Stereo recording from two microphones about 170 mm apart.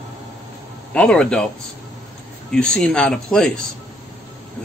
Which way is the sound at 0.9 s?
5° left (ahead or behind).